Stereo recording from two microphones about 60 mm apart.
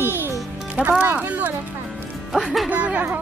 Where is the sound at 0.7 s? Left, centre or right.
Right.